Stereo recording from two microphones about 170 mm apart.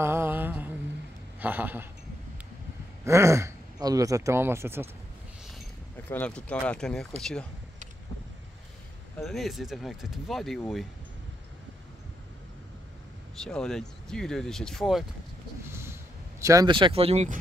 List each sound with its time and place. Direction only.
0.0 s mantra: 15° right (ahead or behind)
1.4 s speech: 10° right (ahead or behind)
3.1 s speech: 15° right (ahead or behind)
6.0 s speech: 10° left (ahead or behind)
9.2 s speech: centre (ahead or behind)
13.4 s speech: 5° left (ahead or behind)
15.6 s a sound: 15° right (ahead or behind); by 17.3 s 35° right (ahead or behind)